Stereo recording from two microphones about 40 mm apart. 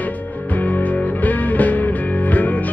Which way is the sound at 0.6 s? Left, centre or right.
Left.